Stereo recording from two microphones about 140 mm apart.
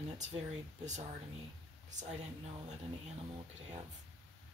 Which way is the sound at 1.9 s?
60° right (ahead or behind).